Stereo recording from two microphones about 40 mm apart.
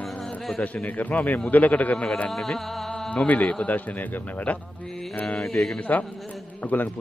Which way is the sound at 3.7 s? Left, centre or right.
Left.